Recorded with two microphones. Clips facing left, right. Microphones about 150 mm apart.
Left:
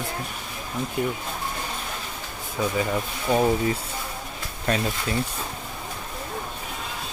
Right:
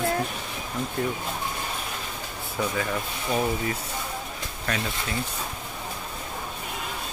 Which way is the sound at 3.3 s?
25° left (ahead or behind).